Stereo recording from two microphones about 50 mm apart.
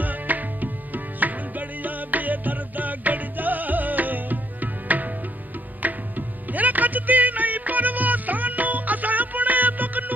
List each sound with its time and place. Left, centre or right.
0.0 s tabla: right
5.8 s music: right